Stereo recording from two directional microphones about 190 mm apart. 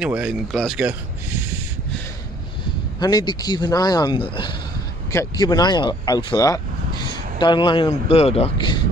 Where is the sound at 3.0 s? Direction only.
20° left (ahead or behind).